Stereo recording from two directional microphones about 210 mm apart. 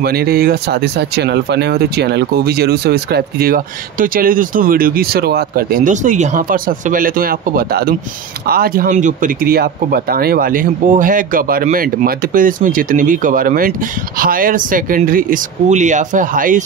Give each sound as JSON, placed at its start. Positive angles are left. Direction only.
{"t": 0.0, "sound": "speech", "side_deg": -50}